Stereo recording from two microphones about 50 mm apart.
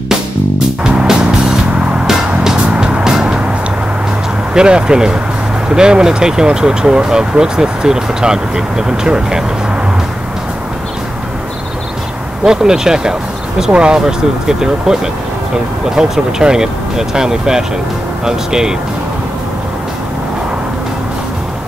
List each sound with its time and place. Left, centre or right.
0.8 s music: centre
4.6 s speech: centre
12.4 s speech: centre